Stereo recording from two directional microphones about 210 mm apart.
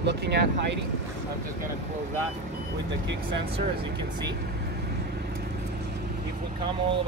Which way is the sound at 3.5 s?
25° right (ahead or behind).